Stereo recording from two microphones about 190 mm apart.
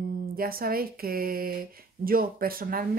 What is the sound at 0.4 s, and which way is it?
Speech, 50° right (ahead or behind).